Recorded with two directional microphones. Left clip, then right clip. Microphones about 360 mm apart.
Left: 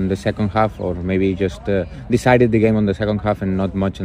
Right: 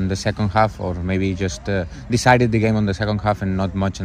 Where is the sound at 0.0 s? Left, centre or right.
Right.